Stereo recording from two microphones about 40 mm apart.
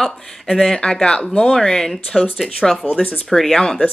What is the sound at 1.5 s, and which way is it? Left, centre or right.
Speech, centre.